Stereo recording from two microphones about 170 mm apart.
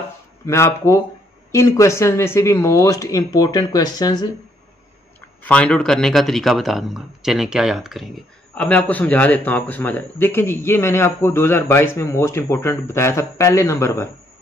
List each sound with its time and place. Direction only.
0.5 s speech: 15° left (ahead or behind)
5.4 s speech: 5° left (ahead or behind)